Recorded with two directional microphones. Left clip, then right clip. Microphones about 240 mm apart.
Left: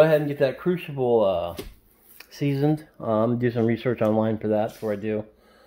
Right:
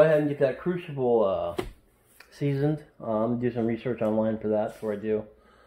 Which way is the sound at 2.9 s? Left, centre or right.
Left.